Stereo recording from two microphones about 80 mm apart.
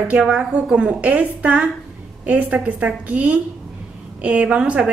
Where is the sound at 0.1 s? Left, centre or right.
Centre.